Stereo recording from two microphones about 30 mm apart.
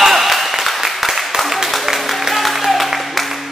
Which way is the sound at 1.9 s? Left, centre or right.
Centre.